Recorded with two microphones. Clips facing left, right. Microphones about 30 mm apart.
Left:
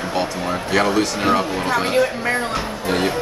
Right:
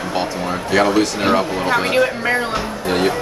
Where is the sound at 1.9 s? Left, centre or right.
Centre.